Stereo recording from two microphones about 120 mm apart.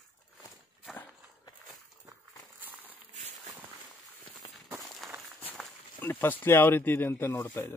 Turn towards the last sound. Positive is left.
turn(degrees=20)  # may be behind; listen again after turning